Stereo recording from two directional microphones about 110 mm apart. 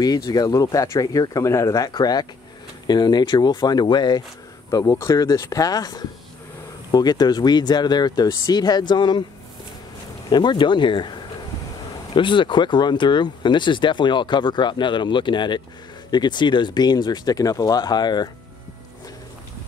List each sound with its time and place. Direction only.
0.0 s speech: 35° left (ahead or behind)
1.9 s speech: 40° left (ahead or behind)
4.6 s speech: 30° left (ahead or behind)
10.3 s speech: 45° left (ahead or behind)
12.2 s speech: 45° left (ahead or behind)